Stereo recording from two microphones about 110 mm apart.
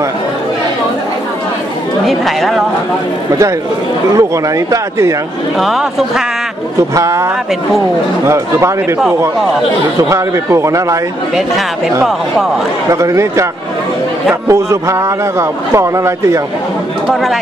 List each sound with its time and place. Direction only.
2.0 s speech: centre (ahead or behind)
4.2 s a man's voice: 30° right (ahead or behind)
5.6 s speech: centre (ahead or behind)
7.0 s a man's voice: 30° right (ahead or behind)
8.3 s a man's voice: 25° right (ahead or behind)
9.9 s a man's voice: 30° right (ahead or behind)
12.9 s a man's voice: 25° right (ahead or behind)
14.5 s a man's voice: 25° right (ahead or behind)
17.1 s speech: centre (ahead or behind)